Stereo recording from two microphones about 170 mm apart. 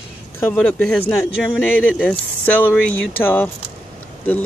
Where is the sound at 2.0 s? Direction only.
10° left (ahead or behind).